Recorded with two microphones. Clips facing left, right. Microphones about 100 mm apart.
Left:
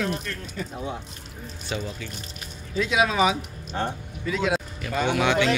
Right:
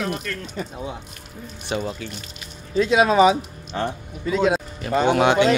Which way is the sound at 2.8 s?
40° right (ahead or behind).